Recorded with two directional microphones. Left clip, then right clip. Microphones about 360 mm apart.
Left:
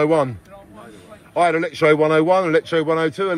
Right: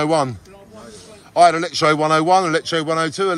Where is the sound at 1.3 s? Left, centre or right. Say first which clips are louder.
Right 4 dB; centre.